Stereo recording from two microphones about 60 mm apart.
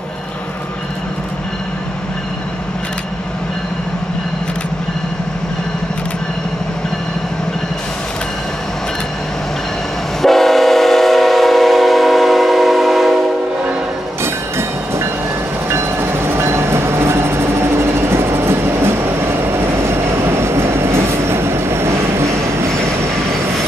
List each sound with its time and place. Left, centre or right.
10.2 s train: centre
15.7 s train: right